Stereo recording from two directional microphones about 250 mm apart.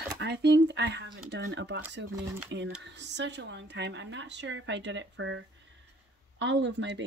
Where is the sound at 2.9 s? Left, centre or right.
Right.